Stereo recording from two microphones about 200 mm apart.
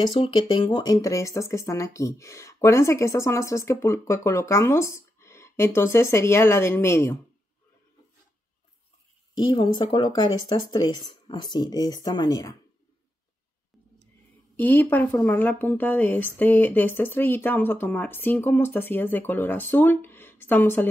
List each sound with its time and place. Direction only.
0.0 s speech: 25° left (ahead or behind)
9.5 s speech: 20° left (ahead or behind)
14.6 s speech: 10° left (ahead or behind)